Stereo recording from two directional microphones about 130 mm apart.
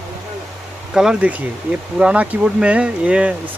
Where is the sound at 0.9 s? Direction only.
5° right (ahead or behind).